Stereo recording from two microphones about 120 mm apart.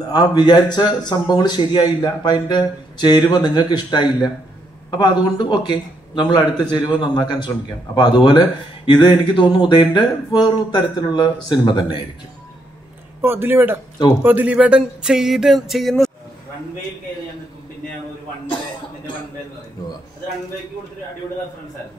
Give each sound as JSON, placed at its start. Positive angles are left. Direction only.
{"t": 0.1, "sound": "a man's voice", "side_deg": 35}
{"t": 13.2, "sound": "speech", "side_deg": -20}